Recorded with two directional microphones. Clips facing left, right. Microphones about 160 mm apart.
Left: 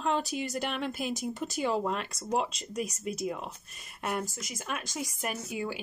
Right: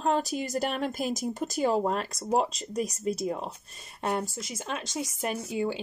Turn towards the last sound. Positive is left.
turn(degrees=-25)  # may be behind; listen again after turning